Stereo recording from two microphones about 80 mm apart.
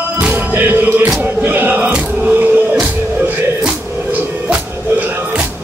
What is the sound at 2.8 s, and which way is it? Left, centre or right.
Music, right.